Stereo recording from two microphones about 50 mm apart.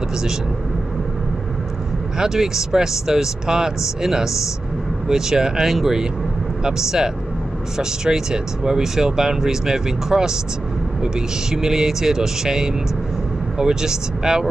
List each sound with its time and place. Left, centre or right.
2.1 s speech: centre